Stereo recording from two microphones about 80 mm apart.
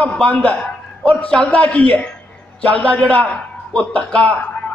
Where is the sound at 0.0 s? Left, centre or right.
Centre.